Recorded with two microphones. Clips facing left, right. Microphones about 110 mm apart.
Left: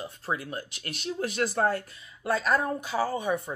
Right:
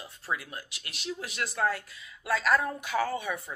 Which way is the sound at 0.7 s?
45° left (ahead or behind).